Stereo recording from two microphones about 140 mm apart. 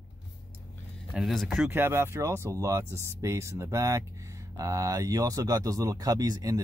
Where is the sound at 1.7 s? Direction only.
15° right (ahead or behind).